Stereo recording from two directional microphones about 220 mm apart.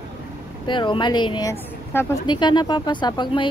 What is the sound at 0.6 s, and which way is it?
Speech, 20° left (ahead or behind).